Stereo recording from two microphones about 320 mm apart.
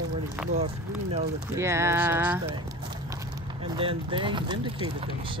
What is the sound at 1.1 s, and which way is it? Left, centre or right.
Speech, centre.